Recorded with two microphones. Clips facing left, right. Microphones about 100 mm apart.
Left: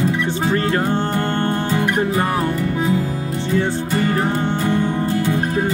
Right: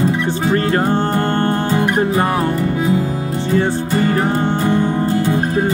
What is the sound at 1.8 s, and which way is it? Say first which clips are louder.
Music: right 3 dB; 30° right (ahead or behind).